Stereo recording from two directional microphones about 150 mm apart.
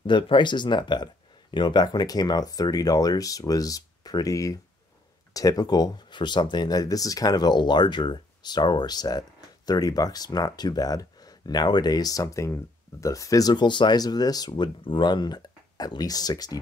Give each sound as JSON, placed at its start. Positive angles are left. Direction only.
{"t": 0.0, "sound": "speech", "side_deg": 30}